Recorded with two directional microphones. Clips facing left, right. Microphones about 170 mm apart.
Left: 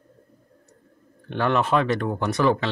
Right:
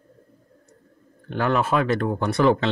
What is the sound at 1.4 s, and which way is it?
Speech, 5° right (ahead or behind).